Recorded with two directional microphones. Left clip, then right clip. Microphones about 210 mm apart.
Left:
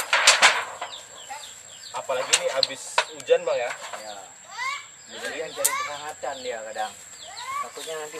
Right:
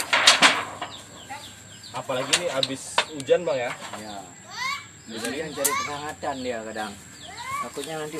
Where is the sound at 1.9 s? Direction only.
5° right (ahead or behind).